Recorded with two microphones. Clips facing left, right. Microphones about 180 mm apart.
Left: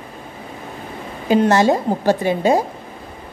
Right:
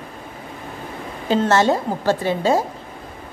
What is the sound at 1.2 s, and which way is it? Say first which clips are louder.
A woman's voice: left 3 dB; 15° left (ahead or behind).